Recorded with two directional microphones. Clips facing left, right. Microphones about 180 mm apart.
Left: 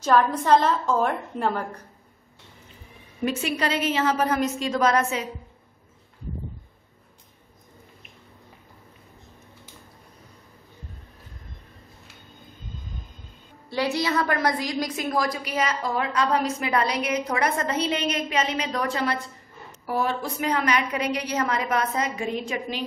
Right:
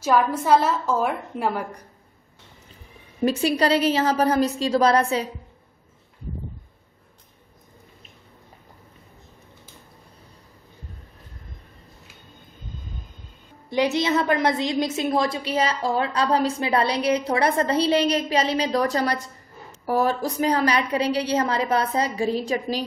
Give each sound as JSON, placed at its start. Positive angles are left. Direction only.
{"t": 0.0, "sound": "a woman's voice", "side_deg": -10}
{"t": 3.3, "sound": "a woman's voice", "side_deg": -35}
{"t": 13.7, "sound": "a woman's voice", "side_deg": -20}